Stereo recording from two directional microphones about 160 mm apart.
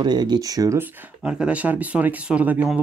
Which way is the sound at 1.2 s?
5° right (ahead or behind).